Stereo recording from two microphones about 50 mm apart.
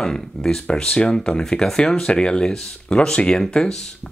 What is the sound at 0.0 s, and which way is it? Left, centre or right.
Speech, centre.